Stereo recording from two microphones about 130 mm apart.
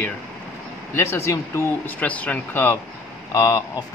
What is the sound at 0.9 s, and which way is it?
Speech, 20° left (ahead or behind).